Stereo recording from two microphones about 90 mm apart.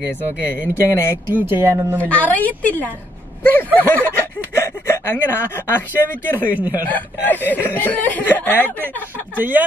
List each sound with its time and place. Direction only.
0.5 s speech: 30° left (ahead or behind)
1.3 s speech: 25° right (ahead or behind)
2.0 s speech: 15° left (ahead or behind)
6.5 s speech: 20° right (ahead or behind)
6.9 s speech: 20° left (ahead or behind)
9.4 s speech: 20° right (ahead or behind)